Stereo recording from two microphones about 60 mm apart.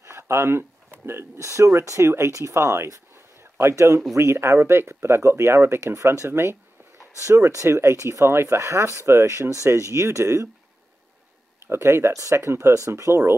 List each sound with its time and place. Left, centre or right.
0.0 s speech: right
11.6 s speech: right
12.1 s speech: right